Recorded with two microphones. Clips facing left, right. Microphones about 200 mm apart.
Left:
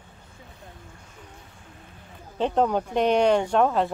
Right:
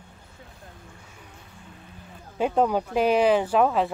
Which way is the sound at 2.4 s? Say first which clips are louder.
Even; 5° right (ahead or behind).